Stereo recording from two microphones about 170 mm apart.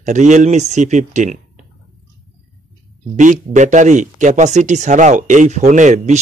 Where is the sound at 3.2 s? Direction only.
45° right (ahead or behind).